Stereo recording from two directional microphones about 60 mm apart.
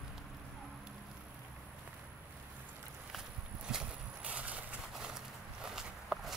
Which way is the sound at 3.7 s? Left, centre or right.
Centre.